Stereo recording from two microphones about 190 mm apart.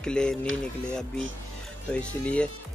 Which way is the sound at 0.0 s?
5° left (ahead or behind).